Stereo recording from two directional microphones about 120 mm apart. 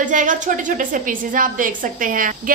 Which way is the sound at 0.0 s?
90° right.